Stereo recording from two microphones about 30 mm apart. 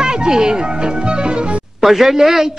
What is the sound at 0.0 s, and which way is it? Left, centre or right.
Speech, right.